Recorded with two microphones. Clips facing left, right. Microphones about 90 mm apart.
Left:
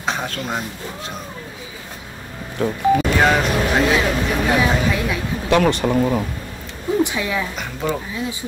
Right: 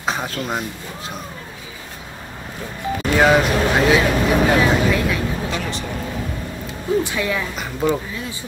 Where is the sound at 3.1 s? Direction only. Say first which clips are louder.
Right 2 dB; 5° right (ahead or behind).